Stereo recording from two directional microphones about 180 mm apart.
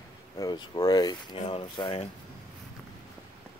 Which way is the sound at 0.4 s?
25° left (ahead or behind).